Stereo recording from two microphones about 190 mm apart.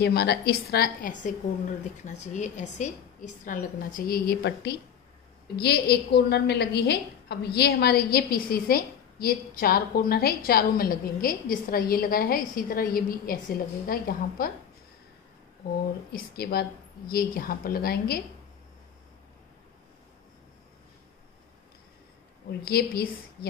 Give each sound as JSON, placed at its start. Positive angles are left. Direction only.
{"t": 0.0, "sound": "a woman's voice", "side_deg": 60}
{"t": 2.0, "sound": "a woman's voice", "side_deg": 40}
{"t": 16.1, "sound": "a woman's voice", "side_deg": 55}
{"t": 22.7, "sound": "a woman's voice", "side_deg": 55}